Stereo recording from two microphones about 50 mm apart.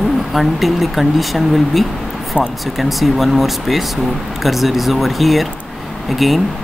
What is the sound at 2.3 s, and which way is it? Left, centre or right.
Speech, right.